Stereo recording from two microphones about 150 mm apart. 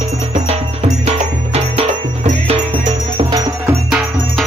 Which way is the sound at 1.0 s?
45° right (ahead or behind).